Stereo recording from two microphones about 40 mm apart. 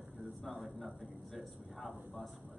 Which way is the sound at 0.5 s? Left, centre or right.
Right.